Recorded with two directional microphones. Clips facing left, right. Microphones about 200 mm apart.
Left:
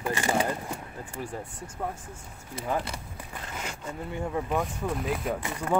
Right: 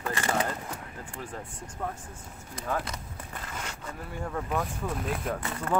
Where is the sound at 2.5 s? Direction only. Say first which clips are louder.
Left 2 dB; 10° left (ahead or behind).